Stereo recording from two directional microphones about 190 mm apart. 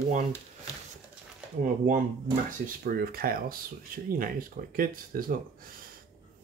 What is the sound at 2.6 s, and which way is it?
Speech, 50° right (ahead or behind).